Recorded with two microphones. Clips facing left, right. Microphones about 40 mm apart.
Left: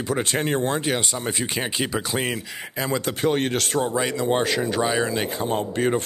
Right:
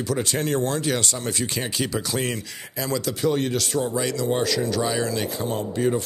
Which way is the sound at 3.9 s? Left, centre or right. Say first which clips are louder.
Left 2 dB; left.